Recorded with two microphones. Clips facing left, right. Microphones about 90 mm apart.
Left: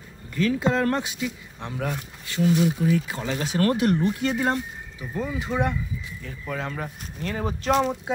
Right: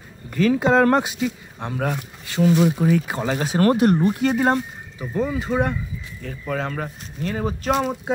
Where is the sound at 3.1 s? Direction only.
45° right (ahead or behind).